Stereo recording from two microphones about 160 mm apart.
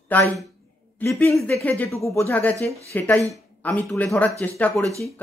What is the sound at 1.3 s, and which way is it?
Speech, centre (ahead or behind).